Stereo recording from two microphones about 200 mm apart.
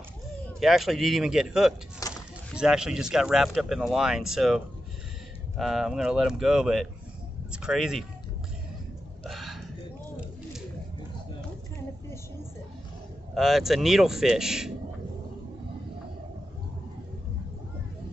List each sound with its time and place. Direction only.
0.6 s speech: centre (ahead or behind)
2.0 s a sound: 15° left (ahead or behind)
2.5 s speech: 5° right (ahead or behind)
9.2 s hiccup: centre (ahead or behind)
13.3 s speech: centre (ahead or behind)